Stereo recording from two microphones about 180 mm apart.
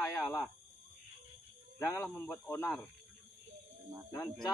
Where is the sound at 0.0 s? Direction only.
15° left (ahead or behind).